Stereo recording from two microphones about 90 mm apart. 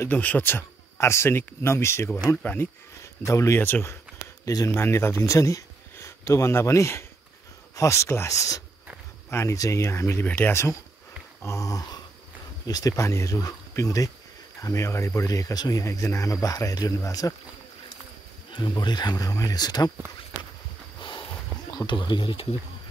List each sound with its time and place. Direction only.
0.0 s speech: 20° left (ahead or behind); by 17.3 s 40° left (ahead or behind)
18.5 s speech: 60° left (ahead or behind)
21.0 s a sound: 60° left (ahead or behind)
21.7 s speech: 60° left (ahead or behind)